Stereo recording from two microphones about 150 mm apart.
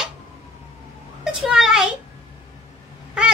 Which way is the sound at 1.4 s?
5° right (ahead or behind).